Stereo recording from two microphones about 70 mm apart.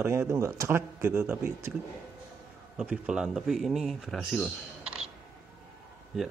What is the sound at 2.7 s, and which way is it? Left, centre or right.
Speech, centre.